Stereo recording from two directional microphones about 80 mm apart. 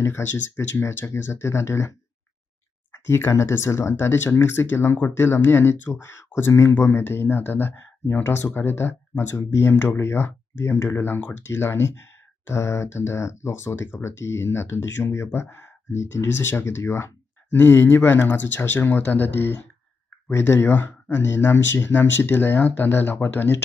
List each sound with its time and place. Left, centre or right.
0.0 s speech: left
3.1 s speech: left